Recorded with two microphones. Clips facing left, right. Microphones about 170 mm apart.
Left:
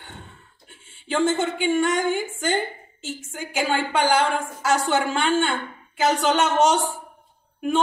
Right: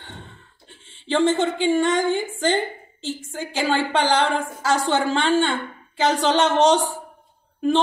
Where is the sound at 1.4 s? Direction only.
30° right (ahead or behind).